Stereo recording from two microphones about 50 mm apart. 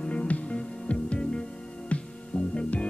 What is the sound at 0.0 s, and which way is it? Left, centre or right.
Music, left.